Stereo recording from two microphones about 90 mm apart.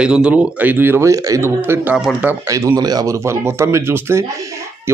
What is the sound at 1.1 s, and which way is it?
Speech, 35° right (ahead or behind).